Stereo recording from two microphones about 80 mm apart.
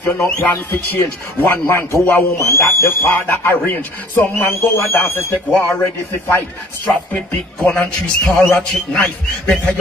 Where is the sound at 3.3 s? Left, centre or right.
Left.